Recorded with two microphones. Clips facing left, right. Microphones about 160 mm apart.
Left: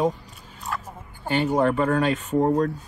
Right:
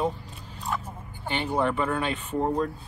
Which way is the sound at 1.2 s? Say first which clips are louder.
Left 5 dB; 40° left (ahead or behind).